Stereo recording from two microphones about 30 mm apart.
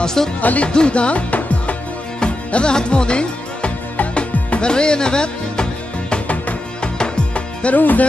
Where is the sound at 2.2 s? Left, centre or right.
Left.